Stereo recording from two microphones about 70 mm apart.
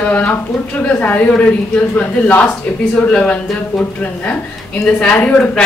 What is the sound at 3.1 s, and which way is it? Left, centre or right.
Speech, centre.